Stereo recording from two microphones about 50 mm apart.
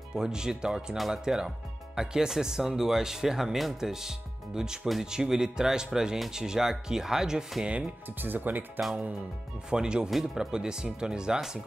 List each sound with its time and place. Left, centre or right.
0.1 s speech: centre
8.2 s speech: right
9.7 s speech: centre